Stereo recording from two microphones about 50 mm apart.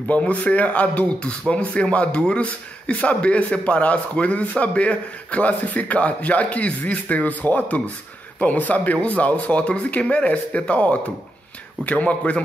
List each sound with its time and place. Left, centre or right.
0.1 s a man's voice: left